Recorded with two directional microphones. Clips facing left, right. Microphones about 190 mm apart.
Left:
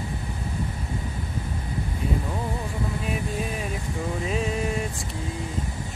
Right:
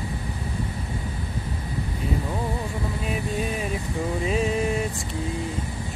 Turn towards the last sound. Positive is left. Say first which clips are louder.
# right 3 dB
turn(degrees=0)  # may be behind; listen again after turning